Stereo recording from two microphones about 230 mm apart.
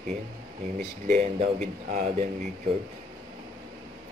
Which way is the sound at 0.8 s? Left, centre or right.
Right.